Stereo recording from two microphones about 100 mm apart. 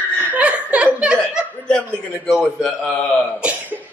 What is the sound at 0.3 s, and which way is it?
Laughter, 15° right (ahead or behind).